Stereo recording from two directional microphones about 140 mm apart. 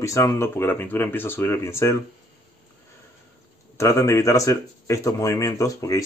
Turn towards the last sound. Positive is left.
turn(degrees=25)  # may be behind; listen again after turning